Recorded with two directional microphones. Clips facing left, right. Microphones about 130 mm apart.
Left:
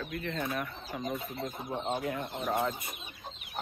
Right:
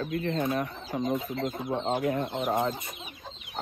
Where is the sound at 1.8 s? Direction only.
90° right.